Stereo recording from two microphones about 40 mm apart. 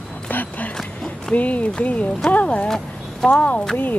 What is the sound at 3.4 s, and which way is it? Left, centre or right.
Speech, left.